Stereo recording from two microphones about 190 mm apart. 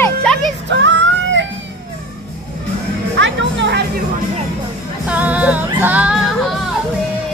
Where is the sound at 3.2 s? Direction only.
70° right (ahead or behind).